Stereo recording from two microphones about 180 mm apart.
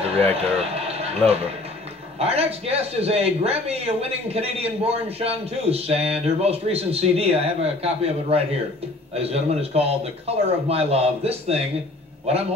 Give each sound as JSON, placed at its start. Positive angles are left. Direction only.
{"t": 0.0, "sound": "a man's voice", "side_deg": -35}